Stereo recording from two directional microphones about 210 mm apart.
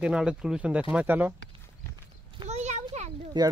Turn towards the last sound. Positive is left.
turn(degrees=-20)  # may be behind; listen again after turning